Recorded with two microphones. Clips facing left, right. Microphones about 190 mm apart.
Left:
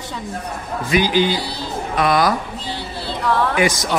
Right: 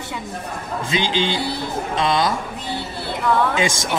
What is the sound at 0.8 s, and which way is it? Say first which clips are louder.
A man's voice: left 5 dB; 25° right (ahead or behind).